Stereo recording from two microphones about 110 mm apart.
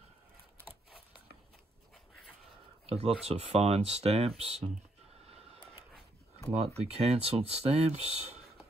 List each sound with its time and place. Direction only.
2.9 s speech: 70° right (ahead or behind)
6.5 s speech: 70° right (ahead or behind)